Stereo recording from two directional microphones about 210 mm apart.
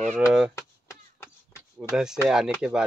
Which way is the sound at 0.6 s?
15° left (ahead or behind).